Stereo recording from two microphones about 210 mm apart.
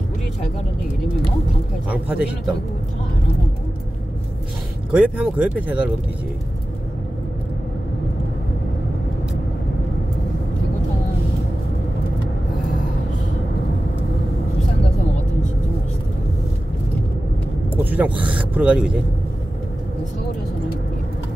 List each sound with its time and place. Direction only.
1.9 s speech: 5° right (ahead or behind)
4.9 s speech: 5° right (ahead or behind)
17.8 s speech: 5° right (ahead or behind)